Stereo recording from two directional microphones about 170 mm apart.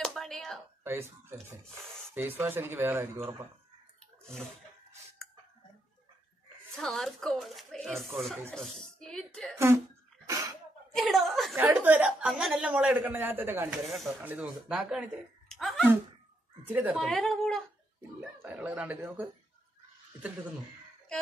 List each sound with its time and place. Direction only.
0.0 s a sound: centre (ahead or behind)
2.1 s speech: 10° right (ahead or behind)
6.7 s speech: 5° left (ahead or behind)
10.2 s sneeze: 20° right (ahead or behind)
11.0 s speech: centre (ahead or behind)
11.5 s speech: 10° right (ahead or behind)
13.8 s speech: centre (ahead or behind)
15.4 s a sound: centre (ahead or behind)
16.6 s speech: 10° right (ahead or behind)
17.0 s speech: centre (ahead or behind)
18.4 s speech: 10° right (ahead or behind)